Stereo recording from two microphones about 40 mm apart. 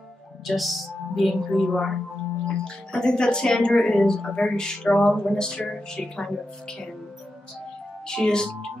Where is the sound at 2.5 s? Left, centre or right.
Centre.